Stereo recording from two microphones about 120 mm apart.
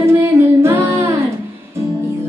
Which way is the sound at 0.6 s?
20° right (ahead or behind).